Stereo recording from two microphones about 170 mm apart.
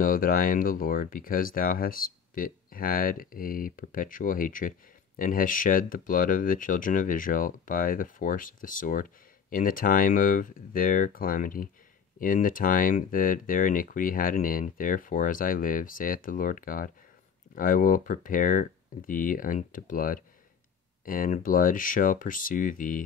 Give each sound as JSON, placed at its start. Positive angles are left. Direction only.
{"t": 0.0, "sound": "speech", "side_deg": 55}